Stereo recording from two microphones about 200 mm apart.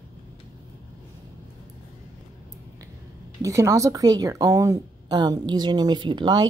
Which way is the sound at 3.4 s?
15° right (ahead or behind).